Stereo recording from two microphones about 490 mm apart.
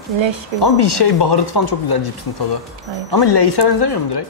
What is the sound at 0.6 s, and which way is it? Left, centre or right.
Speech, left.